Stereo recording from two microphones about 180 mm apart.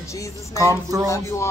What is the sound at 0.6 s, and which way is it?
Speech, 15° right (ahead or behind).